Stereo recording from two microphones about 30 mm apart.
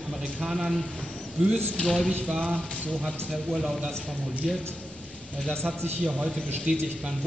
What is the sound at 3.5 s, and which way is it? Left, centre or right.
Speech, centre.